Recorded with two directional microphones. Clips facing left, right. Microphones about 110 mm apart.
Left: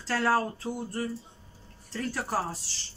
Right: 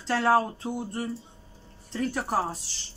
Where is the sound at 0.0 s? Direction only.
20° right (ahead or behind).